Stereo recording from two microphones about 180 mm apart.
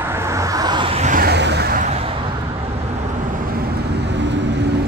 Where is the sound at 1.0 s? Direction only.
45° right (ahead or behind).